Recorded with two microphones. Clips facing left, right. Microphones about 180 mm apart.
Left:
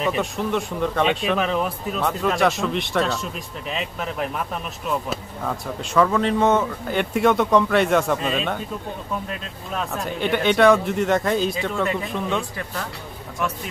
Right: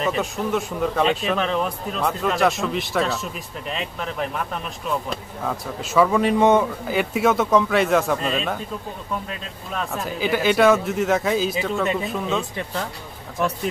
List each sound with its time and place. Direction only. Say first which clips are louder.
0.0 s a man's voice: even; centre (ahead or behind)
11.8 s speech: even; 20° right (ahead or behind)
12.1 s a man's voice: even; 5° right (ahead or behind)
12.4 s speech: right 2 dB; 20° right (ahead or behind)